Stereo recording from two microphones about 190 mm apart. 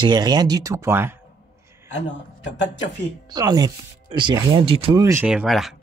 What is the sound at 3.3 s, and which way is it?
Speech, 20° right (ahead or behind).